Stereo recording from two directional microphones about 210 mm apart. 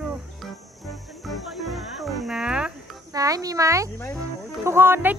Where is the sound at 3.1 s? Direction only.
15° right (ahead or behind).